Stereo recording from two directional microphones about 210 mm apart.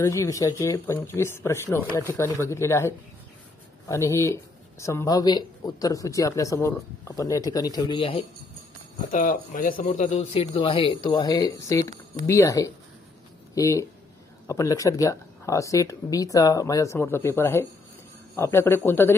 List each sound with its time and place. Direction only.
0.0 s speech: 15° left (ahead or behind)
3.9 s speech: 15° left (ahead or behind)
9.1 s speech: 40° left (ahead or behind); by 19.1 s 10° left (ahead or behind)